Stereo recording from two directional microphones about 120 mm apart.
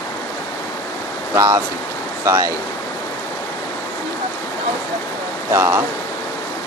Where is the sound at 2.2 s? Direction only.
25° right (ahead or behind).